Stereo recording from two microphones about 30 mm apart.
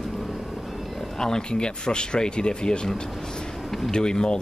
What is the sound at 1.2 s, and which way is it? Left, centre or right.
Speech, left.